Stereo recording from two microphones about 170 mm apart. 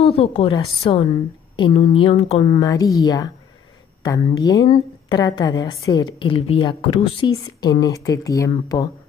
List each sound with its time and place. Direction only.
0.0 s a woman's voice: 35° left (ahead or behind)
2.6 s a woman's voice: 20° left (ahead or behind)